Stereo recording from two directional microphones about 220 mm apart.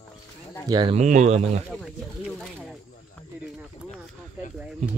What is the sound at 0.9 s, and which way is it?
Speech, 30° right (ahead or behind).